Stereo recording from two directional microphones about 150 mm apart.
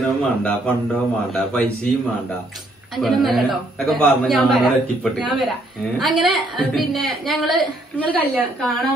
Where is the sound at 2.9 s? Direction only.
Centre (ahead or behind).